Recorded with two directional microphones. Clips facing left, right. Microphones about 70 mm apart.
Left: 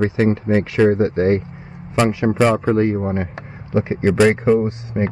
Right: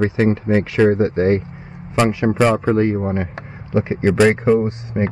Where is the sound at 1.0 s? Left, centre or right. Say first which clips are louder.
Even; right.